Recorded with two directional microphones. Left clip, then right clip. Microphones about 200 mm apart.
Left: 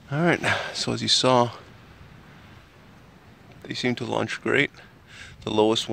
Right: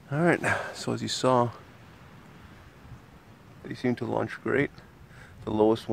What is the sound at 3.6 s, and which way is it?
Speech, 25° left (ahead or behind).